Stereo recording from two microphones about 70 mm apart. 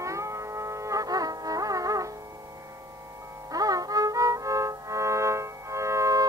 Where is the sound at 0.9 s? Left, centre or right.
Right.